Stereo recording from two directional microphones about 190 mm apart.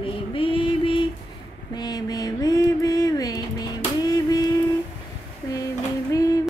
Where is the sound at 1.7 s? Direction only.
20° left (ahead or behind).